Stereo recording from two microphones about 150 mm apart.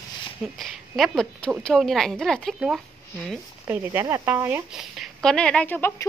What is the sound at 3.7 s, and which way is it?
Speech, 15° right (ahead or behind).